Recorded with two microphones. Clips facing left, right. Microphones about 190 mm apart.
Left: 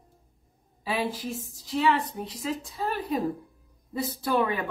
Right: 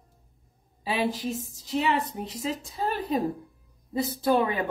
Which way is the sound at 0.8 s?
25° right (ahead or behind).